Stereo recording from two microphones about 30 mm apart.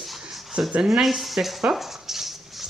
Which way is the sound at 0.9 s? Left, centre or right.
Centre.